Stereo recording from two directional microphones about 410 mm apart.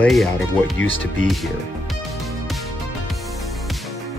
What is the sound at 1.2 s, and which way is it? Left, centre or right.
Speech, centre.